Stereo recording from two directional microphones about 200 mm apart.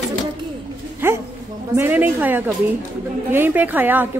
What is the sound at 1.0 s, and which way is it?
A woman's voice, 10° right (ahead or behind).